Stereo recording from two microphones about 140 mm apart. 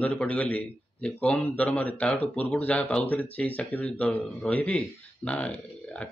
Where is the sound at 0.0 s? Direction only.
10° left (ahead or behind).